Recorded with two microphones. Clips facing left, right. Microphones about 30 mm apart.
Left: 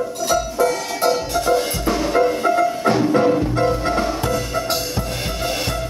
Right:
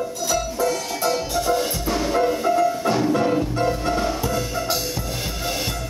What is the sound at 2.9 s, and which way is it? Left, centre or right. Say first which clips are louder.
Music: left 4 dB; left.